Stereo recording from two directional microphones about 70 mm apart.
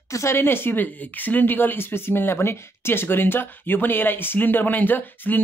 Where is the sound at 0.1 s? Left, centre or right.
Left.